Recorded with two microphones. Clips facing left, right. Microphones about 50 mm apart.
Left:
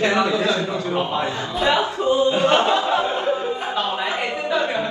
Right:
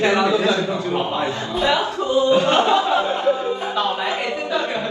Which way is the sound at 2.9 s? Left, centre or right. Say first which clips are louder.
Right 2 dB; left.